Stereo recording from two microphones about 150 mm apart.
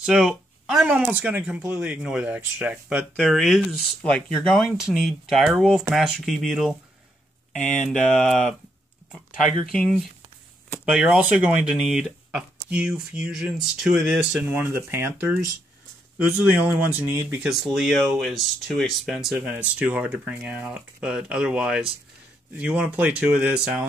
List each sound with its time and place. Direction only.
0.0 s speech: 5° right (ahead or behind)
7.5 s speech: 55° left (ahead or behind)
9.1 s speech: centre (ahead or behind)
10.9 s speech: 5° right (ahead or behind)
17.5 s speech: centre (ahead or behind)